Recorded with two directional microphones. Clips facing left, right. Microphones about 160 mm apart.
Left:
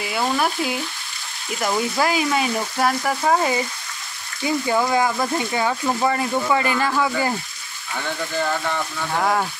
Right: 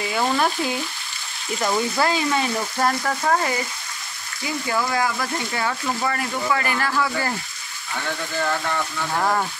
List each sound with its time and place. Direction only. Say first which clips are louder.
0.0 s speech: even; 5° left (ahead or behind)
4.6 s speech: left 3 dB; 25° left (ahead or behind)
8.4 s speech: left 1 dB; 5° left (ahead or behind)